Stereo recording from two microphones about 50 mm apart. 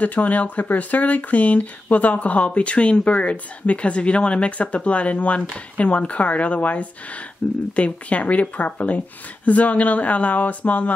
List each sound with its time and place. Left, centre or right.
0.0 s speech: left